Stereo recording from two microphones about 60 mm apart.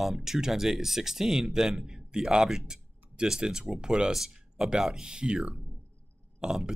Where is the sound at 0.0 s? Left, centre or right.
Centre.